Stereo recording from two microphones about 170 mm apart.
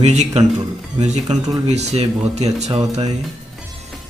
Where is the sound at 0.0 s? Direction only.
40° right (ahead or behind).